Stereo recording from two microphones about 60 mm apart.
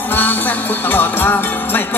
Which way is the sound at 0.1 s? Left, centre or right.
Left.